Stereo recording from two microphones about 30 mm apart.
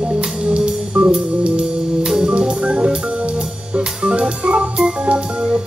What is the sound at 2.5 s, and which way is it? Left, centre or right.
Organ, right.